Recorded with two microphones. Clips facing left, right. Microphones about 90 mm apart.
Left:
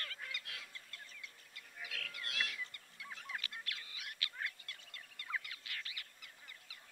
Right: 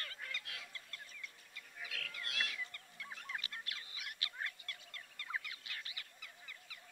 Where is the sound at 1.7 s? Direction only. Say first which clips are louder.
Even; centre (ahead or behind).